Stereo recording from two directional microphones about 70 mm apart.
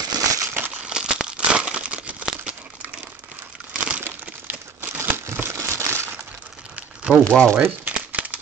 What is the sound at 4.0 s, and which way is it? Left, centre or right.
Crumpling, right.